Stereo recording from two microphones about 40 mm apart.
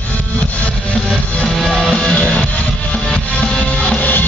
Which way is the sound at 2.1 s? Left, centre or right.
Left.